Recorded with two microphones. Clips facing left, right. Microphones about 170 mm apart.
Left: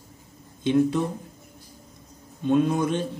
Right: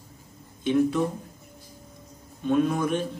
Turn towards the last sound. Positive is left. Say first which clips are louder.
# left 1 dB
turn(degrees=25)  # may be behind; listen again after turning